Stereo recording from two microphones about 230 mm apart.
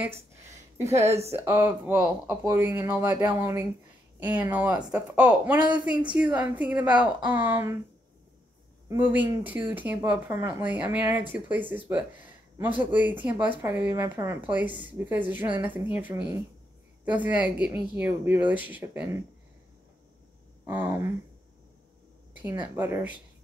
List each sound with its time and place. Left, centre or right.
0.3 s a sound: centre
1.0 s speech: right
1.3 s speech: centre
4.7 s speech: centre
5.1 s speech: centre
5.6 s speech: centre
6.3 s speech: centre
8.8 s speech: centre
20.6 s speech: centre
22.4 s speech: centre